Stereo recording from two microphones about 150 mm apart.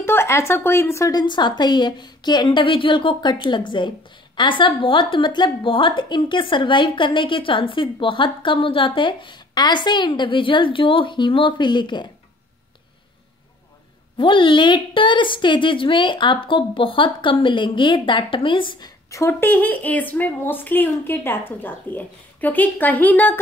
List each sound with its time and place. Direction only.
0.0 s a woman's voice: 15° left (ahead or behind)
14.1 s a woman's voice: 35° left (ahead or behind); by 23.4 s 10° left (ahead or behind)